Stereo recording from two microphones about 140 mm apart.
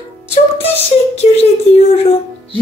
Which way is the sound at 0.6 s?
45° left (ahead or behind).